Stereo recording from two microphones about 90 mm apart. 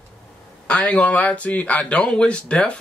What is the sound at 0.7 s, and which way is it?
Speech, 10° left (ahead or behind).